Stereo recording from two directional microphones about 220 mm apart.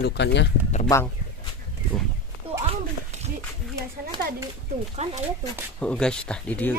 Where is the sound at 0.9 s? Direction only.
15° left (ahead or behind).